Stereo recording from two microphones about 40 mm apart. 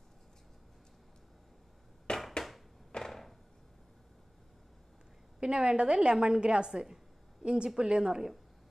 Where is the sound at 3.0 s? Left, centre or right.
Centre.